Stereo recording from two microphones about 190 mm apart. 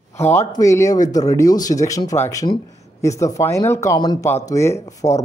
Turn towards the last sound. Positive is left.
turn(degrees=15)  # may be behind; listen again after turning